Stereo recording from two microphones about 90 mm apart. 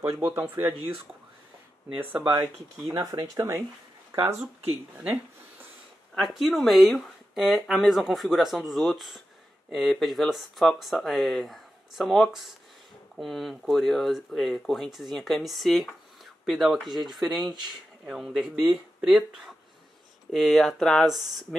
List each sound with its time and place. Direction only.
0.0 s speech: 25° right (ahead or behind)
2.1 s speech: 20° right (ahead or behind)
2.9 s speech: 40° right (ahead or behind)
6.1 s speech: centre (ahead or behind)